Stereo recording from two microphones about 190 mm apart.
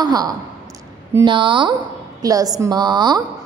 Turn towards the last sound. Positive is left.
turn(degrees=-20)  # may be behind; listen again after turning